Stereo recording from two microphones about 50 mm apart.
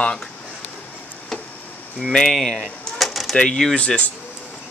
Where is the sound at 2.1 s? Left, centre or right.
Centre.